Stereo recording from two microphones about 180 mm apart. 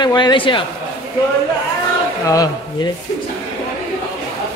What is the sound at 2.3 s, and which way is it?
Speech, 20° left (ahead or behind).